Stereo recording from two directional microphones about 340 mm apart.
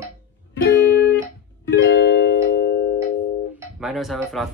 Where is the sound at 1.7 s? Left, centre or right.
Left.